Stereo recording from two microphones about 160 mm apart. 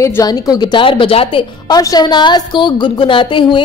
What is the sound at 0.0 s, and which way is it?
A woman's voice, 20° left (ahead or behind).